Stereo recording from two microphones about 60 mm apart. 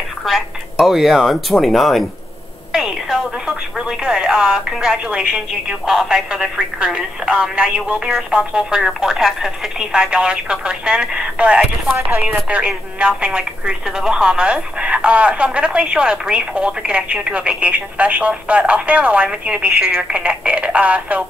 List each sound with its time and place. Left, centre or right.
0.2 s speech: centre
2.7 s telephone: centre
3.8 s speech: centre